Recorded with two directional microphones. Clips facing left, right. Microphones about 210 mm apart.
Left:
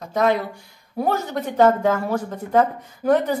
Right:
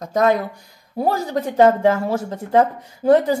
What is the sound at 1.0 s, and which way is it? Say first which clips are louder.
A woman's voice: right 2 dB; 30° right (ahead or behind).